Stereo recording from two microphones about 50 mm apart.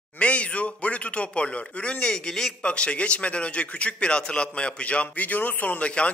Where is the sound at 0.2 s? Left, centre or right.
Left.